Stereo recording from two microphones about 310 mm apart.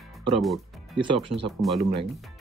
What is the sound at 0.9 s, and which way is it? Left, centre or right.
Speech, centre.